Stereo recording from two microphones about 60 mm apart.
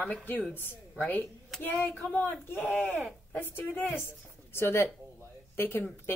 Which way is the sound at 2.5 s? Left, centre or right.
Left.